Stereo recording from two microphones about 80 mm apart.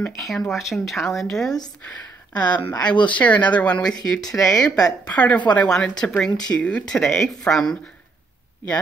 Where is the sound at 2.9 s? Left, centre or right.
Left.